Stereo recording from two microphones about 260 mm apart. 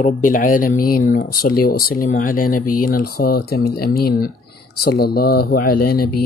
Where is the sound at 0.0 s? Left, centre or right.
Left.